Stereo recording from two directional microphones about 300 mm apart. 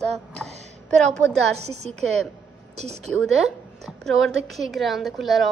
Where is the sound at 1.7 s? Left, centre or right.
Right.